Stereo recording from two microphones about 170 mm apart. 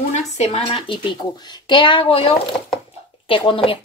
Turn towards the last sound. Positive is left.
turn(degrees=30)  # may be behind; listen again after turning